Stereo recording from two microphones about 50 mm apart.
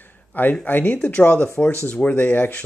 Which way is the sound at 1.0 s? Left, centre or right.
Left.